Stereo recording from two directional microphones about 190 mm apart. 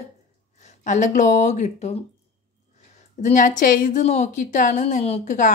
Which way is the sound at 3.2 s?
40° left (ahead or behind).